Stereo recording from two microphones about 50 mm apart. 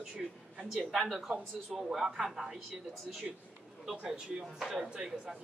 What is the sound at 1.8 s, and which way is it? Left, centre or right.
A man's voice, centre.